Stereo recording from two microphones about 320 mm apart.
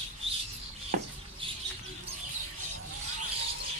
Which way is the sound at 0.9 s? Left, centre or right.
Right.